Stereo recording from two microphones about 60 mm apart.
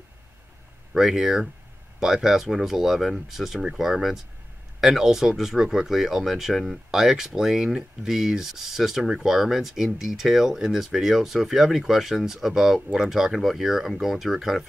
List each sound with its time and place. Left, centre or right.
0.9 s speech: centre